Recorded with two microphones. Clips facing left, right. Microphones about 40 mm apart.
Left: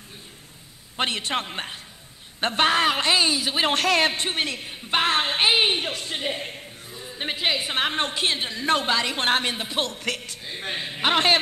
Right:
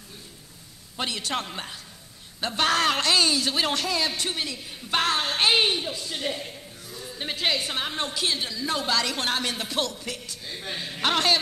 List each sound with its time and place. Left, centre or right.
0.9 s a woman's voice: left
2.7 s speech: left
3.8 s speech: left
4.1 s a woman's voice: left
4.6 s a sound: left
5.8 s speech: left
6.1 s a man's voice: left
6.9 s a sound: left
7.7 s a woman's voice: left
8.8 s speech: left
9.8 s speech: left
10.6 s a woman's voice: left
10.9 s speech: left